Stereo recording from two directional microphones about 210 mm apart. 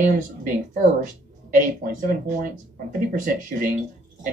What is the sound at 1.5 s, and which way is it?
Speech, 40° right (ahead or behind).